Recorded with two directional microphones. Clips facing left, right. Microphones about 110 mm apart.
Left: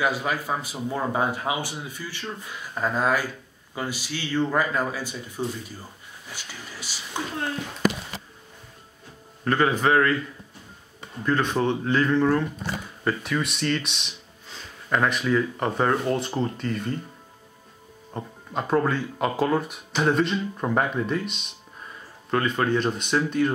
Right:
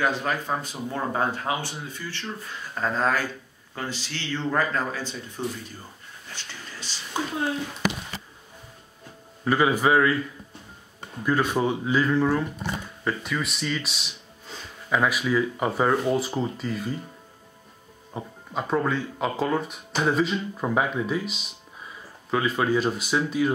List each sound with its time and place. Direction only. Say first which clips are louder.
0.0 s speech: even; 10° left (ahead or behind)
7.2 s speech: right 2 dB; 10° right (ahead or behind)
9.4 s speech: even; 10° right (ahead or behind)
11.2 s speech: even; 10° right (ahead or behind)
18.1 s speech: left 1 dB; centre (ahead or behind)